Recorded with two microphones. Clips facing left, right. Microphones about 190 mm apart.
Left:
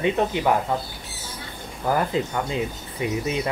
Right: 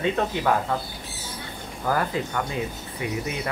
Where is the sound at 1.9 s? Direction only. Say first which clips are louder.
Left 2 dB; 20° left (ahead or behind).